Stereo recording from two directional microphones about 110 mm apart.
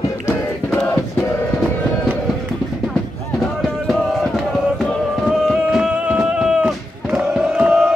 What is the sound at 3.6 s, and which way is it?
Music, 5° left (ahead or behind).